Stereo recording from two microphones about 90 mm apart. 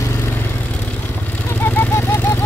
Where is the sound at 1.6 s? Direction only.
25° left (ahead or behind).